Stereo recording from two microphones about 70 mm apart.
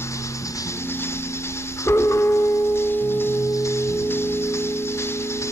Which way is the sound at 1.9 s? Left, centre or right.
Left.